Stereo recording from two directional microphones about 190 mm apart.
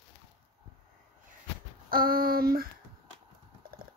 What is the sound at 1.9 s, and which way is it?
Speech, 50° right (ahead or behind).